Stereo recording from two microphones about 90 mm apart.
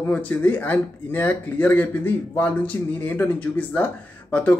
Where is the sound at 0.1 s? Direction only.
15° left (ahead or behind).